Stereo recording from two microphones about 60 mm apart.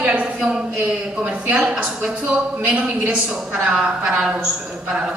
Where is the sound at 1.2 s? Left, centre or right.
Centre.